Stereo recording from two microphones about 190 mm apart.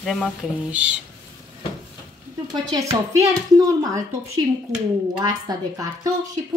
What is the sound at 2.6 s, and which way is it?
A woman's voice, 15° right (ahead or behind).